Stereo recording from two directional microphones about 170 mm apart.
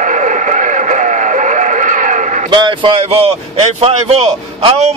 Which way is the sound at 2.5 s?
30° right (ahead or behind).